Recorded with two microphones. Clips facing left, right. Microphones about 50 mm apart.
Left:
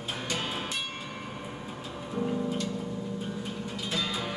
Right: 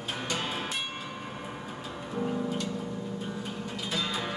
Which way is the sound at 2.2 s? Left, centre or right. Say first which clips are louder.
Left 1 dB; centre.